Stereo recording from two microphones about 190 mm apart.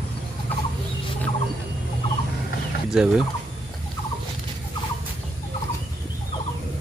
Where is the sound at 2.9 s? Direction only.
5° right (ahead or behind).